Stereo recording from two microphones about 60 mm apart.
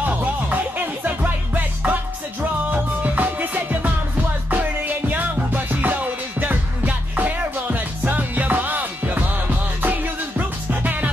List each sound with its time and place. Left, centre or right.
0.0 s music: right